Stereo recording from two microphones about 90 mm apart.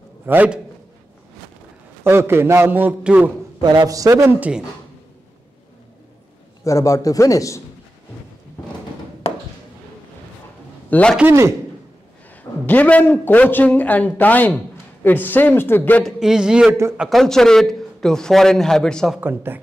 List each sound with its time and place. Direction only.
0.3 s a man's voice: 25° right (ahead or behind)
2.0 s a man's voice: 25° right (ahead or behind)
3.6 s a man's voice: 45° right (ahead or behind)
4.4 s speech: 10° right (ahead or behind)
6.6 s a man's voice: 35° left (ahead or behind)
10.9 s a man's voice: 15° left (ahead or behind)
12.6 s a man's voice: 15° left (ahead or behind)
16.0 s a man's voice: 5° right (ahead or behind)
17.1 s a man's voice: 5° left (ahead or behind)
19.1 s a man's voice: 25° right (ahead or behind)